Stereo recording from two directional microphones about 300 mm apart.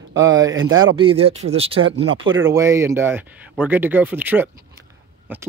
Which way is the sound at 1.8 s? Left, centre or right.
Right.